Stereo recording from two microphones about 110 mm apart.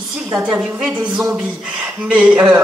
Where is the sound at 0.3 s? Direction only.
15° right (ahead or behind).